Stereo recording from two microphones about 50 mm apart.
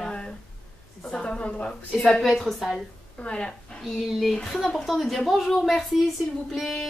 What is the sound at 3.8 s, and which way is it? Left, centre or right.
Speech, centre.